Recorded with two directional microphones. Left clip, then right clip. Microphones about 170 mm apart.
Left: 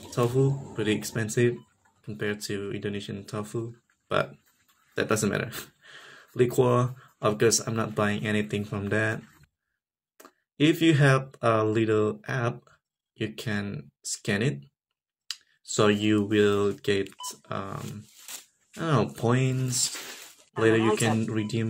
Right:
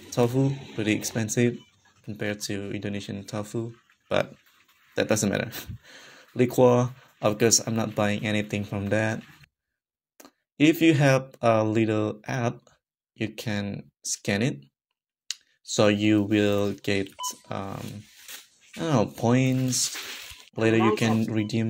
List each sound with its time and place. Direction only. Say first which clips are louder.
0.1 s speech: right 1 dB; 25° right (ahead or behind)